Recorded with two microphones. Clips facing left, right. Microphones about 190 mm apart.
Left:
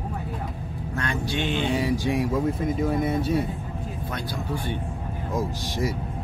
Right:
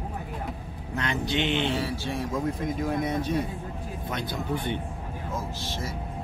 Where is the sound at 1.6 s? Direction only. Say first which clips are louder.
Left 5 dB; 15° left (ahead or behind).